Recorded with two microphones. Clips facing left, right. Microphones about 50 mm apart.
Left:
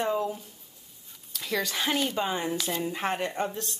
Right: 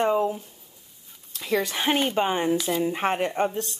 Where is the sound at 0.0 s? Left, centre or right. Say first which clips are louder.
Right 6 dB; right.